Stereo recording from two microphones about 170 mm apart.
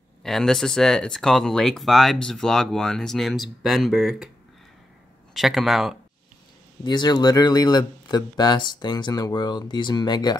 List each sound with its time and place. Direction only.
0.2 s speech: centre (ahead or behind)
5.3 s speech: centre (ahead or behind)
6.8 s speech: 25° left (ahead or behind)